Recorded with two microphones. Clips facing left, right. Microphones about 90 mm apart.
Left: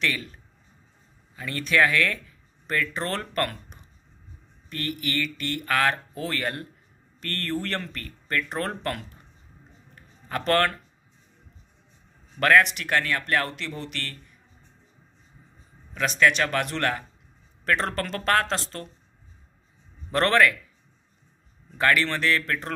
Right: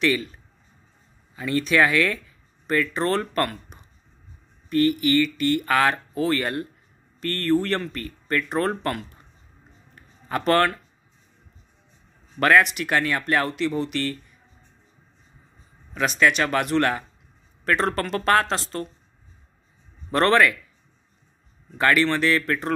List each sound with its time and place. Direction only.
0.0 s speech: 5° right (ahead or behind)
1.3 s speech: 10° right (ahead or behind)
10.2 s speech: 10° right (ahead or behind)
12.4 s speech: 10° right (ahead or behind)
15.9 s speech: 15° right (ahead or behind)
20.1 s speech: 5° right (ahead or behind)
21.7 s speech: 5° right (ahead or behind)